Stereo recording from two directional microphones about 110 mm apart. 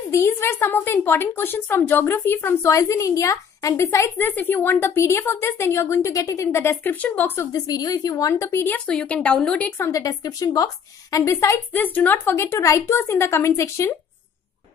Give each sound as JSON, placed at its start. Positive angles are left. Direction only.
{"t": 0.1, "sound": "a woman's voice", "side_deg": 20}
{"t": 7.6, "sound": "a woman's voice", "side_deg": 35}
{"t": 8.6, "sound": "a woman's voice", "side_deg": 10}
{"t": 9.9, "sound": "a woman's voice", "side_deg": 35}